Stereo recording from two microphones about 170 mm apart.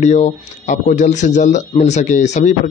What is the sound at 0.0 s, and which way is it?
Speech, 45° left (ahead or behind).